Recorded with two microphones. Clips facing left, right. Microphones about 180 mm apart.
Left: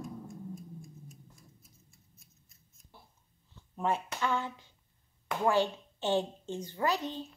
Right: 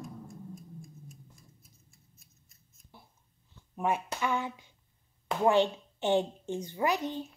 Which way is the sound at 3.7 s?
15° right (ahead or behind).